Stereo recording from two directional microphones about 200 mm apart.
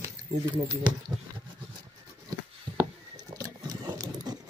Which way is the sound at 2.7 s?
15° right (ahead or behind).